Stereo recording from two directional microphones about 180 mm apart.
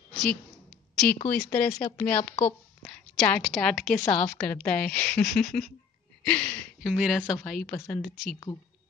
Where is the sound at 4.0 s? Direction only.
15° left (ahead or behind).